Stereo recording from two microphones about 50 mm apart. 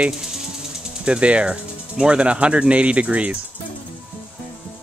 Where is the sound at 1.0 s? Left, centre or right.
Right.